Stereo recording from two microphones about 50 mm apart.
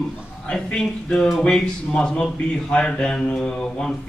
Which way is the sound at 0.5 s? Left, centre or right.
Centre.